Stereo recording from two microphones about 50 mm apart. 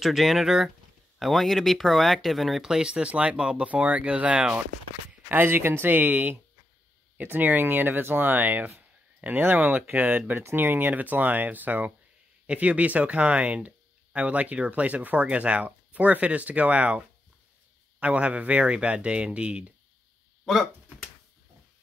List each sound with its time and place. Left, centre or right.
0.0 s speech: centre
3.0 s speech: right
5.3 s speech: right
18.0 s speech: right